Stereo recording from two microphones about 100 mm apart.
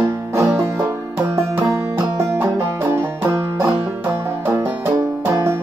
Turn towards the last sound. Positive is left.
turn(degrees=-25)  # may be behind; listen again after turning